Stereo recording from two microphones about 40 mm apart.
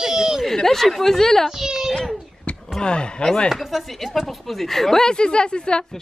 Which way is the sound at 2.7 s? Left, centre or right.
Left.